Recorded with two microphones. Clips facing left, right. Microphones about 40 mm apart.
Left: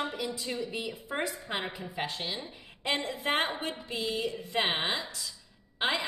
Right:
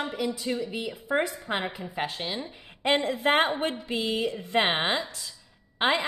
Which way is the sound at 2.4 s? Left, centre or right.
Right.